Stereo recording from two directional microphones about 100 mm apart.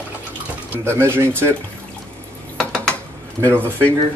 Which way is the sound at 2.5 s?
10° left (ahead or behind).